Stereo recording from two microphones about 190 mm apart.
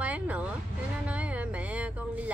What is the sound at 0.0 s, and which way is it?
Vehicle, 5° right (ahead or behind).